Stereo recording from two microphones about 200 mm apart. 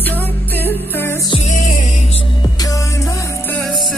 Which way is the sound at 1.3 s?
35° left (ahead or behind).